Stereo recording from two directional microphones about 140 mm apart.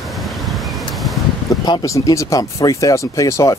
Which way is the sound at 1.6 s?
25° left (ahead or behind).